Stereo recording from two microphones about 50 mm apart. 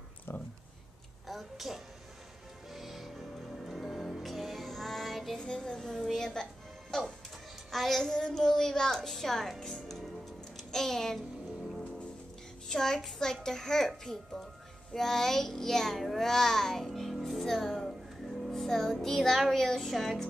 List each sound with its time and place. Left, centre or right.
0.3 s a sound: left
1.2 s a sound: centre
2.7 s music: centre
5.4 s a child's voice: centre
6.9 s music: centre
7.7 s a child's voice: centre
10.5 s music: centre
12.6 s a child's voice: centre